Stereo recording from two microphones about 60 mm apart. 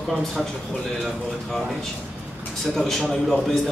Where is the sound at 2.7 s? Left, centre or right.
Centre.